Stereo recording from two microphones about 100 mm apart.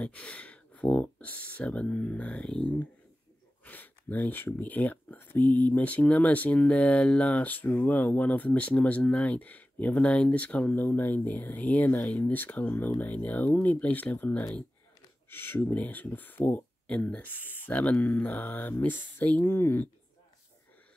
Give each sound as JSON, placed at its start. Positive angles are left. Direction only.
{"t": 0.0, "sound": "speech", "side_deg": 10}